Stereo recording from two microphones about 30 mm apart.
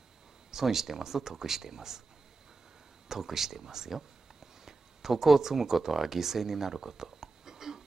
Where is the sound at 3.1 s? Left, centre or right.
Centre.